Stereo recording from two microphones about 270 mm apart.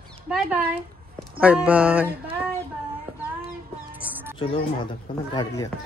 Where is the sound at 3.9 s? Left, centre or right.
Centre.